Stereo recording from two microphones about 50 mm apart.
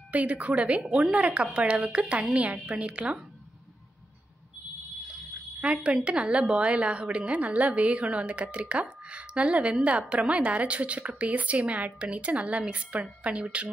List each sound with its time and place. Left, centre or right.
0.1 s a woman's voice: right
0.8 s a woman's voice: centre
1.1 s a woman's voice: right
5.6 s a woman's voice: right